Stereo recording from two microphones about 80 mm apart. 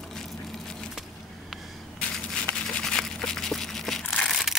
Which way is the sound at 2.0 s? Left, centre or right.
Centre.